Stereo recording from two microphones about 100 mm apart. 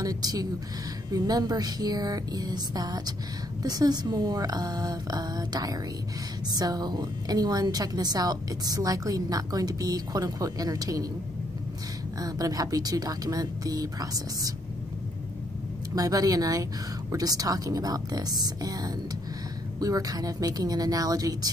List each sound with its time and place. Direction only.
0.0 s a woman's voice: 40° right (ahead or behind)
12.2 s a woman's voice: 40° right (ahead or behind)
15.9 s a woman's voice: 40° right (ahead or behind)